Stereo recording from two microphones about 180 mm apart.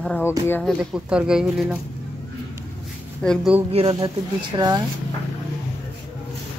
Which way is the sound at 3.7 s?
30° right (ahead or behind).